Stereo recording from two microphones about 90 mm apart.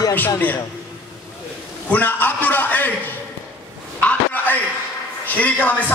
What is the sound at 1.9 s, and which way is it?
A man's voice, 20° left (ahead or behind).